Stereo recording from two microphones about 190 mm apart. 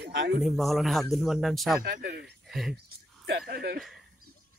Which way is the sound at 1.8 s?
60° right (ahead or behind).